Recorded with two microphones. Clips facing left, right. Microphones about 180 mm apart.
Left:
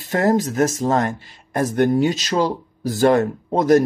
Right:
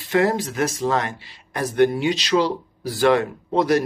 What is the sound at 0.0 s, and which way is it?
Speech, 45° left (ahead or behind).